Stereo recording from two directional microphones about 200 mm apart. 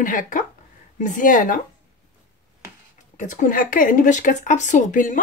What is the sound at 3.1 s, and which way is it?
Speech, 40° left (ahead or behind).